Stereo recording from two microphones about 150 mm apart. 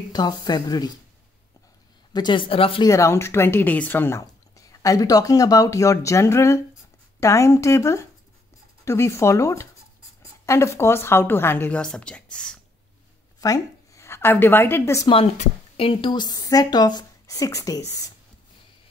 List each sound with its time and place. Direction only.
0.1 s speech: 25° left (ahead or behind)
2.1 s speech: 30° left (ahead or behind)
2.8 s a woman's voice: 20° left (ahead or behind)
13.4 s a woman's voice: 20° left (ahead or behind)
15.0 s speech: 40° left (ahead or behind); by 18.1 s 20° left (ahead or behind)